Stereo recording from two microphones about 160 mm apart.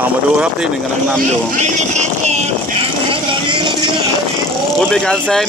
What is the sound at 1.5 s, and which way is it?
Speech, 45° right (ahead or behind).